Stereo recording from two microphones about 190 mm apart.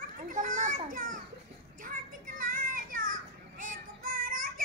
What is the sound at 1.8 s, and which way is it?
Child singing, 45° right (ahead or behind).